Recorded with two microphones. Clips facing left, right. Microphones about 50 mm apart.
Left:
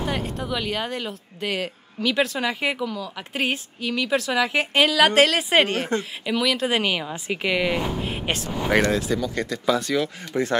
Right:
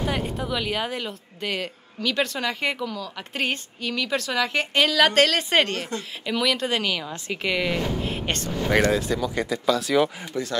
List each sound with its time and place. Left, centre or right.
0.0 s speech: centre
6.7 s a woman's voice: centre
8.9 s speech: centre
10.3 s speech: left